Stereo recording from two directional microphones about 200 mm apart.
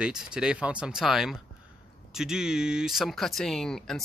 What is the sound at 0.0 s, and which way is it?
Speech, 5° right (ahead or behind).